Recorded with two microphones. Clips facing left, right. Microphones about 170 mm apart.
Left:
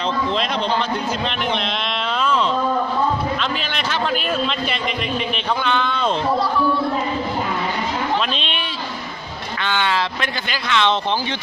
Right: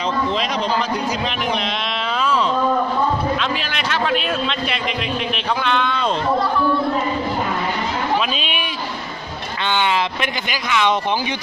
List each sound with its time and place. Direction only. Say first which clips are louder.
3.3 s a man's voice: right 1 dB; centre (ahead or behind)
9.7 s speech: right 2 dB; 15° right (ahead or behind)